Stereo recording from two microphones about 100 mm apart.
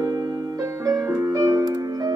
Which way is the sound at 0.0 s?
35° right (ahead or behind).